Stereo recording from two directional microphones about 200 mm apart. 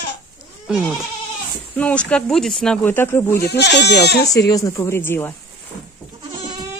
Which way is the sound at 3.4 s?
55° left (ahead or behind).